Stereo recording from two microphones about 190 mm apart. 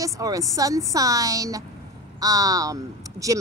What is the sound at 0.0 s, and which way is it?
Speech, 15° right (ahead or behind).